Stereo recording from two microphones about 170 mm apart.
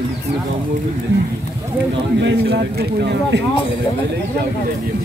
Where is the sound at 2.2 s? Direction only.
75° right (ahead or behind).